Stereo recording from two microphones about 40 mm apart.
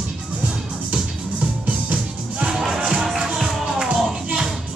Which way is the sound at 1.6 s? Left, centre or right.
Right.